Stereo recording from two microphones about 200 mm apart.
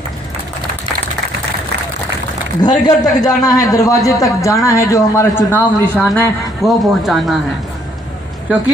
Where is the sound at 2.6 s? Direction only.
20° left (ahead or behind); by 7.4 s centre (ahead or behind).